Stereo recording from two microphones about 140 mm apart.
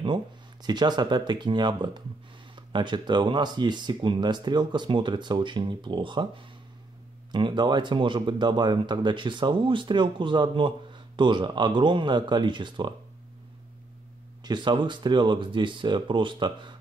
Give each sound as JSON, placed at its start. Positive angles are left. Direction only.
{"t": 0.0, "sound": "speech", "side_deg": -30}
{"t": 14.4, "sound": "speech", "side_deg": -35}